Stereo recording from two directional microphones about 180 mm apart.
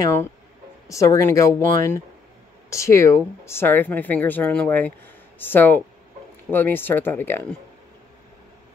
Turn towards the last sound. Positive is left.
turn(degrees=10)  # may be behind; listen again after turning